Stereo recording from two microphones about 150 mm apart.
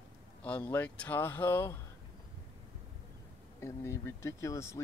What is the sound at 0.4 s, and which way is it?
Speech, 10° left (ahead or behind).